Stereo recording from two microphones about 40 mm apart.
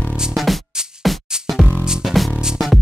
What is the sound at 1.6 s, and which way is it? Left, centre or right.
Music, right.